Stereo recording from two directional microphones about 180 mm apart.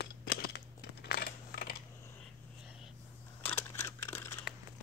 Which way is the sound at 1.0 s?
60° left (ahead or behind).